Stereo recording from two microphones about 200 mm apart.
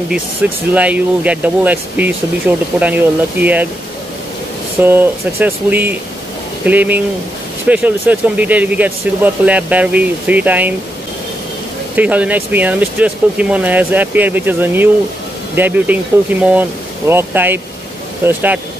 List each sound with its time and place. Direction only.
0.4 s speech: 5° right (ahead or behind)
4.7 s speech: 10° right (ahead or behind)
11.9 s speech: 5° right (ahead or behind)